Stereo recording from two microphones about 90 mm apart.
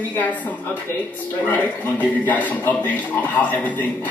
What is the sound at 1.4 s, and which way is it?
Speech, 20° left (ahead or behind).